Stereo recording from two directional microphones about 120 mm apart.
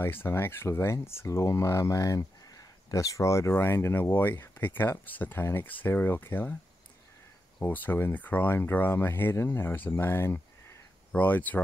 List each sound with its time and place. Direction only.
0.0 s speech: 20° left (ahead or behind)
7.5 s speech: 15° left (ahead or behind)